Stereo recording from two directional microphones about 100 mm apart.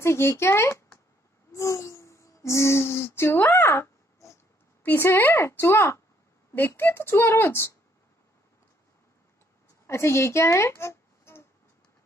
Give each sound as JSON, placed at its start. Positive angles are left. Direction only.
{"t": 0.0, "sound": "a woman's voice", "side_deg": 25}
{"t": 1.5, "sound": "a sound", "side_deg": 30}
{"t": 4.8, "sound": "a woman's voice", "side_deg": 20}
{"t": 9.8, "sound": "speech", "side_deg": 25}